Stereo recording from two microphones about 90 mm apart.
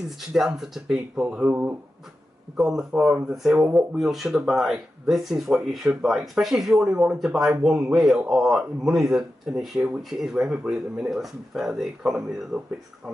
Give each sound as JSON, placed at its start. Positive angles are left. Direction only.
{"t": 0.3, "sound": "a man's voice", "side_deg": -5}
{"t": 1.5, "sound": "speech", "side_deg": -20}
{"t": 2.5, "sound": "a man's voice", "side_deg": -5}